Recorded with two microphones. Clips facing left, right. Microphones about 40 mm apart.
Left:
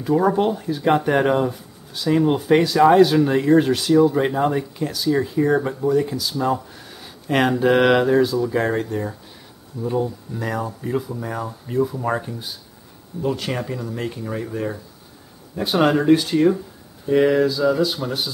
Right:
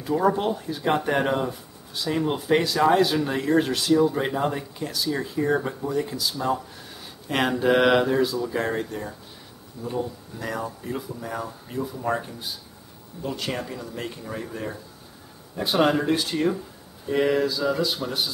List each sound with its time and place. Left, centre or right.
0.0 s speech: centre
11.1 s speech: left
11.3 s speech: centre
13.2 s speech: centre